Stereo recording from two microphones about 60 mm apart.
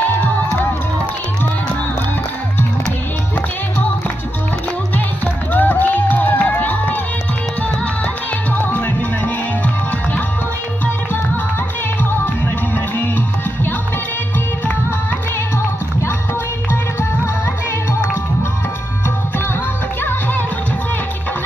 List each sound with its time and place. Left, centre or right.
4.9 s music: left
8.5 s music: left
12.7 s music: left
20.0 s music: left